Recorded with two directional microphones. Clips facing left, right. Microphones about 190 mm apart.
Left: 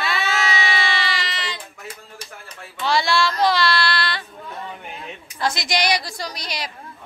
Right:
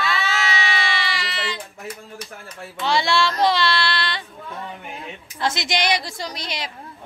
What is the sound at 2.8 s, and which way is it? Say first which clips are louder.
Child singing: even; 20° right (ahead or behind).